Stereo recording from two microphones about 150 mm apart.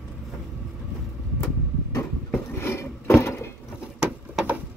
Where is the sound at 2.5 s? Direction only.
15° left (ahead or behind).